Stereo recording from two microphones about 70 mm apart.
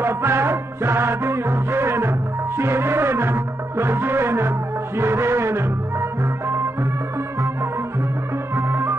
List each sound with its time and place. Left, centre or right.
0.0 s music: right
8.5 s music: right